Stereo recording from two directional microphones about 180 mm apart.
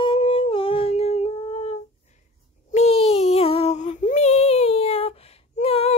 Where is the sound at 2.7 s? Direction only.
35° left (ahead or behind).